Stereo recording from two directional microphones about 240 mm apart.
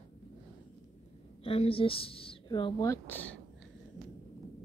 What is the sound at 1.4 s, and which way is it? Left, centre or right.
Speech, left.